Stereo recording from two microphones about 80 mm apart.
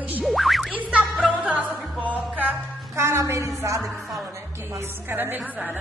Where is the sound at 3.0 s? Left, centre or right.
Right.